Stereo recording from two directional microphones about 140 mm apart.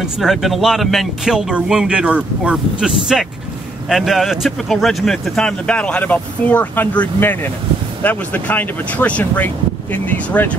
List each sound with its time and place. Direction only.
0.2 s speech: centre (ahead or behind)